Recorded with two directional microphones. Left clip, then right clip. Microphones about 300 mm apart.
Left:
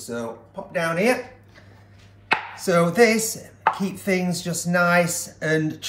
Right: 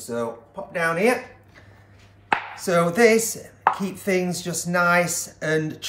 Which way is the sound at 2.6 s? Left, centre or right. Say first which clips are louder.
Even; centre.